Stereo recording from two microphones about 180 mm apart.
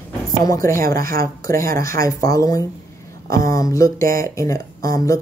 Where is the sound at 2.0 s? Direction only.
20° left (ahead or behind).